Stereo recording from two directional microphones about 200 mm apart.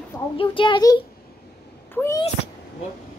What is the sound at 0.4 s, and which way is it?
Speech, 25° left (ahead or behind).